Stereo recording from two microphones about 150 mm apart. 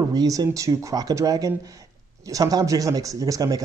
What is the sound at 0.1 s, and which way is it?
Speech, 25° right (ahead or behind).